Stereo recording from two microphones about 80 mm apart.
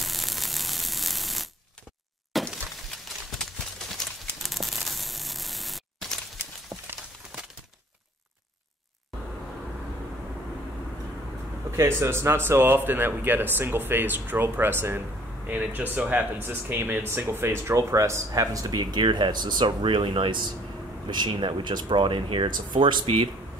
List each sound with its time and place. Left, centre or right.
0.0 s static: centre
2.3 s breaking: centre
4.0 s clip-clop: centre
4.4 s a sound: centre
6.7 s a sound: centre
11.7 s speech: right